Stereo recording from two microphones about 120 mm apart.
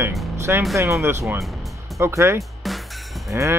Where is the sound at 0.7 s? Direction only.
25° right (ahead or behind).